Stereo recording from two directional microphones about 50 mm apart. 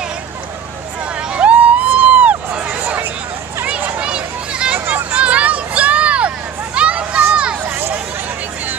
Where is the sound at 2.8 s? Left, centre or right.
Right.